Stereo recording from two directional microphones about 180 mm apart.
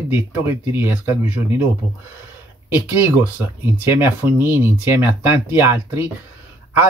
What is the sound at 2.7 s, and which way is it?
Speech, 10° right (ahead or behind).